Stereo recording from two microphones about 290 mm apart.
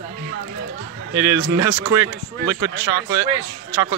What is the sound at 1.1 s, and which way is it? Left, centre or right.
A man's voice, centre.